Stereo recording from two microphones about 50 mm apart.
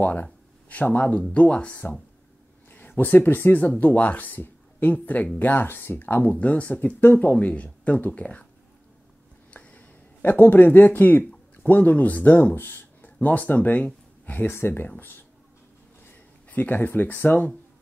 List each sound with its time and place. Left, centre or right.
0.0 s a sound: left
1.3 s speech: left
5.4 s speech: left
6.2 s speech: left
7.2 s speech: left
9.5 s a sound: left
10.2 s speech: left
14.5 s speech: left